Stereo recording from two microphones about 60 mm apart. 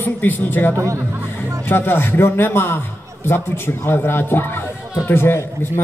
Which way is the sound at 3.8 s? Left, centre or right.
Left.